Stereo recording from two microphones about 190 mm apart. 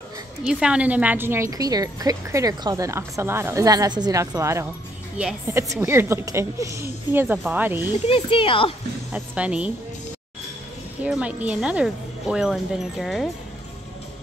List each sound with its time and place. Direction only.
0.5 s a woman's voice: 5° right (ahead or behind)
8.1 s speech: 30° left (ahead or behind)
9.1 s a woman's voice: 5° right (ahead or behind)
11.1 s speech: 5° right (ahead or behind)